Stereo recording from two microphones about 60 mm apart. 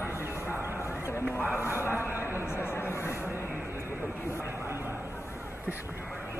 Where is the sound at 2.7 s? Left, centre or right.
Left.